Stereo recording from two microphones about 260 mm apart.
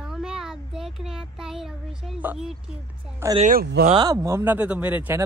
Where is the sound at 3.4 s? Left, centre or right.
Right.